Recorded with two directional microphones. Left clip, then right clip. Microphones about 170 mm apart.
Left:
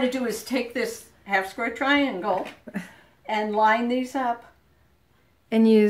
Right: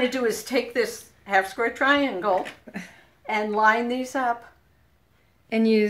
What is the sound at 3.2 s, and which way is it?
A woman's voice, 10° left (ahead or behind).